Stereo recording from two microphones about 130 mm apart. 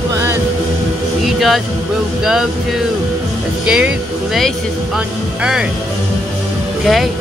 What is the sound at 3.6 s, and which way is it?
Speech, 5° right (ahead or behind).